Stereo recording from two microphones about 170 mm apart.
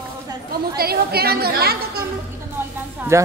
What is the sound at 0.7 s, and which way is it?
A woman's voice, 65° right (ahead or behind).